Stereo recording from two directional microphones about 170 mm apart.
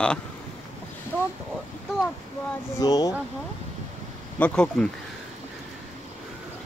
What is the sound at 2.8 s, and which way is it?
Speech, 20° left (ahead or behind).